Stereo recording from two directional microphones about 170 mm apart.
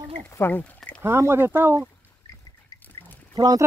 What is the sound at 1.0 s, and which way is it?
Speech, 15° right (ahead or behind).